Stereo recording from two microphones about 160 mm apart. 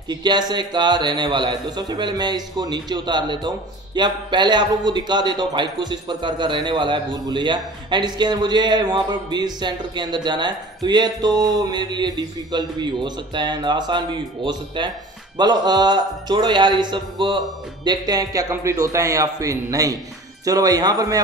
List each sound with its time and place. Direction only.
0.1 s a man's voice: 25° right (ahead or behind)